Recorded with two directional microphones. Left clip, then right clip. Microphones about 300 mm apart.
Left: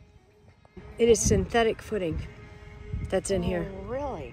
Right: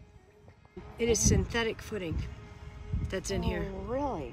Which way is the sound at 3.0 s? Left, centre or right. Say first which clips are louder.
Left 7 dB; centre.